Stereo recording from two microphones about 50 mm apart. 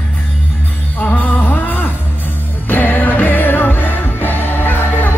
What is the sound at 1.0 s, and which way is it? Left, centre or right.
Music, left.